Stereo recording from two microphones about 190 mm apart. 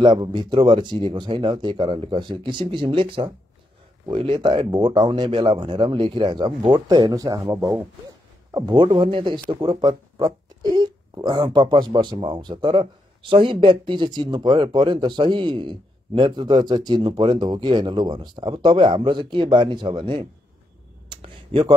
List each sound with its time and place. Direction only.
0.0 s speech: 25° right (ahead or behind)